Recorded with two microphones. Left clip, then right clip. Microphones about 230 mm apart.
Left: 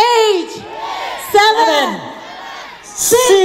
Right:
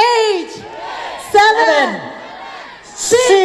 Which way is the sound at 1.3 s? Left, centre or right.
Left.